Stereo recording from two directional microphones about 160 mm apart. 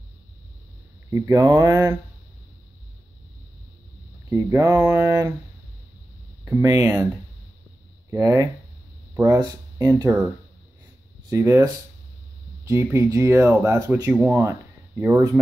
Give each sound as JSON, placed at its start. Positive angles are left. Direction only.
{"t": 1.1, "sound": "mantra", "side_deg": -20}
{"t": 4.3, "sound": "mantra", "side_deg": -20}
{"t": 6.4, "sound": "speech", "side_deg": -20}
{"t": 8.1, "sound": "mantra", "side_deg": -20}
{"t": 9.1, "sound": "speech", "side_deg": -20}
{"t": 11.2, "sound": "mantra", "side_deg": -20}
{"t": 12.6, "sound": "speech", "side_deg": -20}